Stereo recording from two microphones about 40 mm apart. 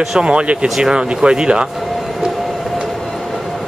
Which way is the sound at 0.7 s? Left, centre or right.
Centre.